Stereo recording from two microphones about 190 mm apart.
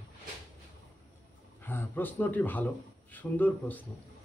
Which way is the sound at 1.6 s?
10° left (ahead or behind).